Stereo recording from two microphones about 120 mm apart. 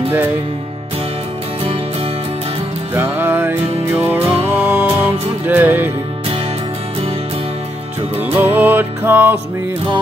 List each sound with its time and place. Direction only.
2.9 s music: 15° right (ahead or behind)
8.4 s music: 15° right (ahead or behind)